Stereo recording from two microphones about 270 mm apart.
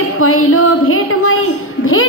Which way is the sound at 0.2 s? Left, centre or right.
Left.